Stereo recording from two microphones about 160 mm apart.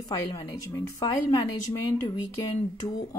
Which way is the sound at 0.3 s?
25° left (ahead or behind).